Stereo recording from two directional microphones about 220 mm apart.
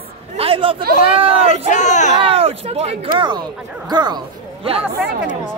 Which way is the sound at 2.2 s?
25° right (ahead or behind).